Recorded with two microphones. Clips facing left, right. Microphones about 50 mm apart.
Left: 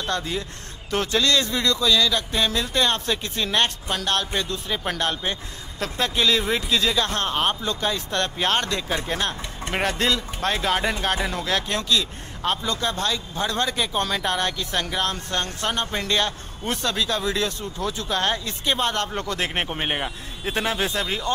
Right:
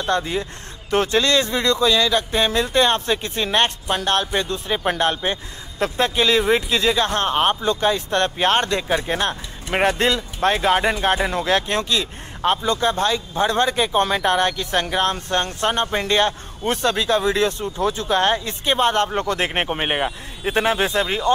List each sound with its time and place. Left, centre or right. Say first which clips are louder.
0.0 s speech: right 5 dB; right